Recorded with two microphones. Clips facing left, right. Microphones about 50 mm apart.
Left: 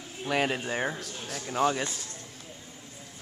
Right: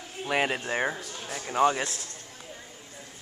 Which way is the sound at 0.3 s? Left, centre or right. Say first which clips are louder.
Right 1 dB; centre.